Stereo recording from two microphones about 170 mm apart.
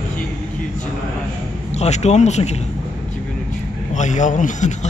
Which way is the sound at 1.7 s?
40° left (ahead or behind).